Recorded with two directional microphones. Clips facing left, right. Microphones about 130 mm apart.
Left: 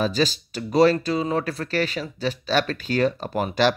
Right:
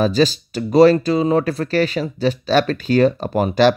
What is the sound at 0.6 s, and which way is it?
Speech, 55° right (ahead or behind).